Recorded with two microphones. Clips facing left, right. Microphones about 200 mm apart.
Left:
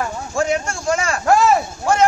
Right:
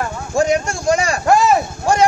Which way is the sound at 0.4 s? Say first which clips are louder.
Right 4 dB; 15° right (ahead or behind).